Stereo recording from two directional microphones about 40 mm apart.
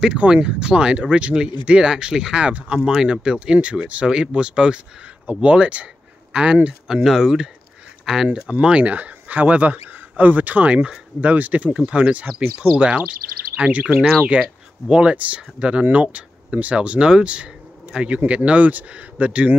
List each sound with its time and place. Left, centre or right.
0.1 s speech: right
2.4 s speech: right
2.8 s speech: centre
5.2 s speech: right
6.9 s speech: centre
8.3 s speech: right
8.9 s speech: right
14.4 s speech: right
15.8 s speech: right